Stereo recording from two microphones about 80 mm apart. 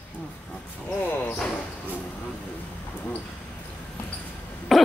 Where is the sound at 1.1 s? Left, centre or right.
Centre.